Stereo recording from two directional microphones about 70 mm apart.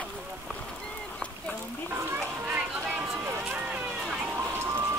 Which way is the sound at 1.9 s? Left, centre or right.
Right.